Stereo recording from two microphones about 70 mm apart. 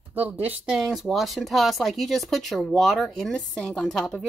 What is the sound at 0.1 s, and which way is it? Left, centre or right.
Speech, right.